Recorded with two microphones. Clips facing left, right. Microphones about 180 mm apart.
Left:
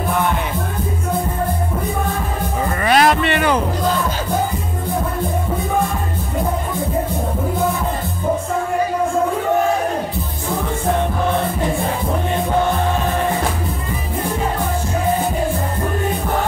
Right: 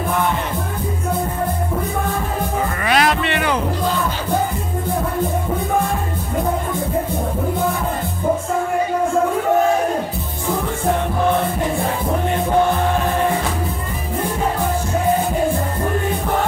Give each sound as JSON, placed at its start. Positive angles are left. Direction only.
{"t": 2.8, "sound": "music", "side_deg": 40}